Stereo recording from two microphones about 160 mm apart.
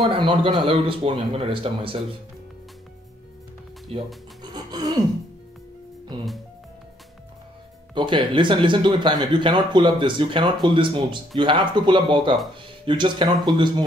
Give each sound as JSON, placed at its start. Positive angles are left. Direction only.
{"t": 0.1, "sound": "speech", "side_deg": -30}
{"t": 4.4, "sound": "music", "side_deg": -25}
{"t": 6.1, "sound": "speech", "side_deg": -30}
{"t": 7.9, "sound": "speech", "side_deg": -30}